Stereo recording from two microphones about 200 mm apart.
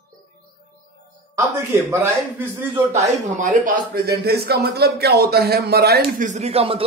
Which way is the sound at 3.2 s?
40° right (ahead or behind).